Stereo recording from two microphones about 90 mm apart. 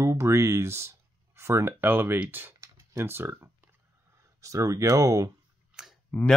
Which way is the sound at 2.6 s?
30° right (ahead or behind).